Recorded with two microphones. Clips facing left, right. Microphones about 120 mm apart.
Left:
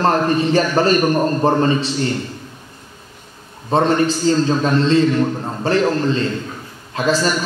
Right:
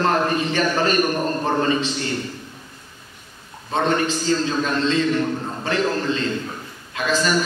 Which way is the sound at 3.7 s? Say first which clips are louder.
Left 5 dB; 35° left (ahead or behind).